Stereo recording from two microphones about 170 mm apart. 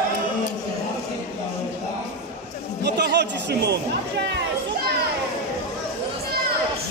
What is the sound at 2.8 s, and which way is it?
Speech, 90° right.